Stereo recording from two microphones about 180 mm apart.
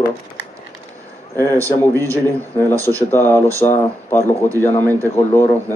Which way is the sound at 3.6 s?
30° left (ahead or behind).